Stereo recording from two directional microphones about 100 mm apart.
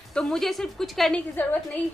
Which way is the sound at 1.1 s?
15° left (ahead or behind).